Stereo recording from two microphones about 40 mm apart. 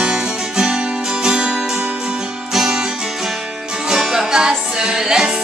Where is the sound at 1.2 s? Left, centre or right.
Right.